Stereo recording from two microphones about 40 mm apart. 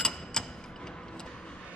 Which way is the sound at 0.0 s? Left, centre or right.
Centre.